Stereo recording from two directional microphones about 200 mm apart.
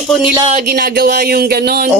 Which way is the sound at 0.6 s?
50° right (ahead or behind).